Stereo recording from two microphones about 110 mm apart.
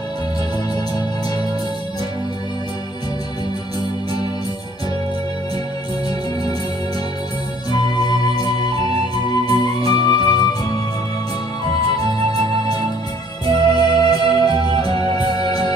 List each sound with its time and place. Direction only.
7.7 s music: 40° left (ahead or behind)
13.5 s music: 40° left (ahead or behind)